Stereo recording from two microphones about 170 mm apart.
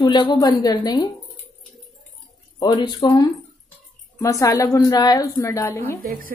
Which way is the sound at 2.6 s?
25° left (ahead or behind).